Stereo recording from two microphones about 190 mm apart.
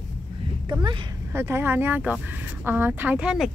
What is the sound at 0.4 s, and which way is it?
Speech, 25° right (ahead or behind).